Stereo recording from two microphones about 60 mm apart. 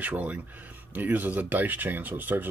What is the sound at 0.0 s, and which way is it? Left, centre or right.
Speech, right.